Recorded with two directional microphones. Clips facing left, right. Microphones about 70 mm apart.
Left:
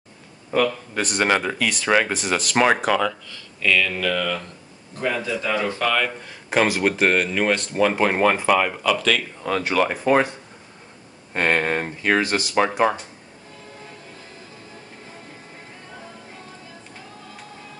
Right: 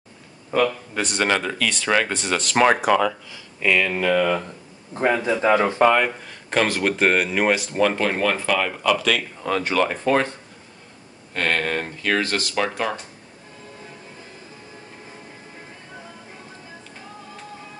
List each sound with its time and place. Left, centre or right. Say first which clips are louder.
0.5 s speech: even; centre
1.2 s speech: left 1 dB; centre; by 6.1 s right
6.2 s speech: left 1 dB; centre
7.8 s speech: left 3 dB; centre
8.7 s speech: even; centre
11.3 s speech: left 2 dB; left